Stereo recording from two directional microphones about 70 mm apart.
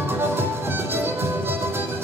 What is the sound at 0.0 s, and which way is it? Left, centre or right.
Music, right.